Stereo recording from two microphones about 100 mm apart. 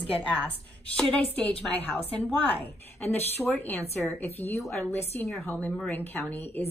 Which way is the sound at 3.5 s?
15° left (ahead or behind).